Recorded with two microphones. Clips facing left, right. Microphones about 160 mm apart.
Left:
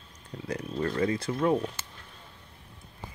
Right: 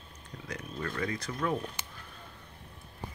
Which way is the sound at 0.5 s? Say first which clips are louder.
Left 7 dB; 30° left (ahead or behind).